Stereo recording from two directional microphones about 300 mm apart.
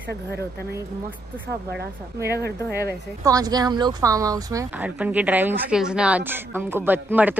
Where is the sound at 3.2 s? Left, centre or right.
Centre.